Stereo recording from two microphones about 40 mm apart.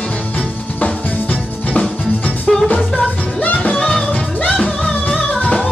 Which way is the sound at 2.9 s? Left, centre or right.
Left.